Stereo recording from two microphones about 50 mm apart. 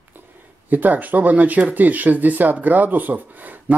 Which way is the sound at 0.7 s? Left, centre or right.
Right.